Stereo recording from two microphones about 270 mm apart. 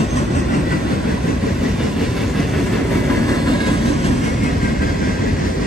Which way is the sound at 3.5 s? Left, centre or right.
Centre.